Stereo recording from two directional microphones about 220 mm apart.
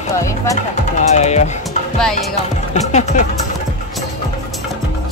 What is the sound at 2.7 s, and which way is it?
Speech, 30° left (ahead or behind).